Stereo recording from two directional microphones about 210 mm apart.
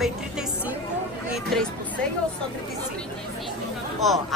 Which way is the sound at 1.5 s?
Centre (ahead or behind).